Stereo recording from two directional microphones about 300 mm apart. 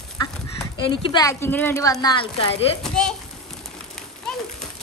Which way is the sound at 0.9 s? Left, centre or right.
Centre.